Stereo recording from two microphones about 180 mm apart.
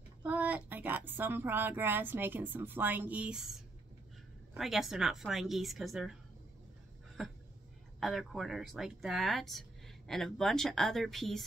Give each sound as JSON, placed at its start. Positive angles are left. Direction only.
{"t": 0.2, "sound": "speech", "side_deg": -10}
{"t": 4.6, "sound": "speech", "side_deg": 0}
{"t": 7.2, "sound": "a sound", "side_deg": 0}
{"t": 8.0, "sound": "speech", "side_deg": 0}